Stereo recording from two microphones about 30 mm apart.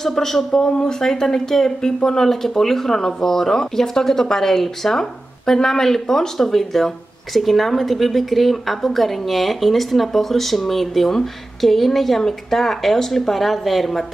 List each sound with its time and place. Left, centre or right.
0.0 s a woman's voice: centre